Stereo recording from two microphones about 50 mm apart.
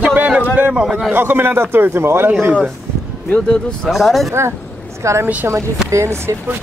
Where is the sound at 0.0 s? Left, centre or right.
Right.